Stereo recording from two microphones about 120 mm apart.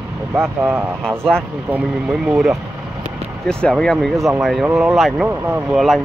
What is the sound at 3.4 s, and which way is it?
Speech, 5° left (ahead or behind).